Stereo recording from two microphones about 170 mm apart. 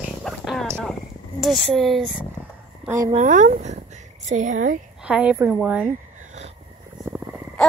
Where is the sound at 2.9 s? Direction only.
20° right (ahead or behind).